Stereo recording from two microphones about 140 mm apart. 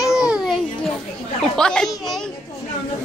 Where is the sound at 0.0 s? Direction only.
5° right (ahead or behind).